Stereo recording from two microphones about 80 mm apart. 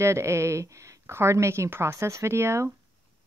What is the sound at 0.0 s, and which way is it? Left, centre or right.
Speech, right.